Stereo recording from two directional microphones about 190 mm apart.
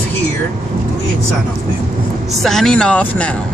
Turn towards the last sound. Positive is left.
turn(degrees=5)  # may be behind; listen again after turning